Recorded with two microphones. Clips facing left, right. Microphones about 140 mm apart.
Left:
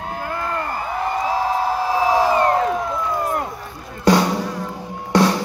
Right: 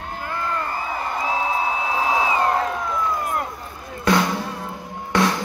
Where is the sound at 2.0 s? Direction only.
70° left (ahead or behind).